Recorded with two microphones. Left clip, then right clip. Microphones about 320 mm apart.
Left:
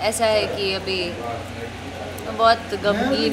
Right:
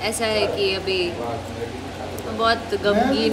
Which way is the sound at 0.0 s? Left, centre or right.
Centre.